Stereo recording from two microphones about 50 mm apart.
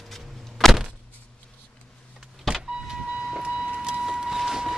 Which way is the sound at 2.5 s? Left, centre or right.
Centre.